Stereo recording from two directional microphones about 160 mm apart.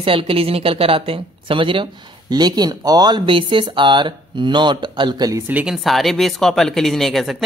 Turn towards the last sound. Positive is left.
turn(degrees=0)  # may be behind; listen again after turning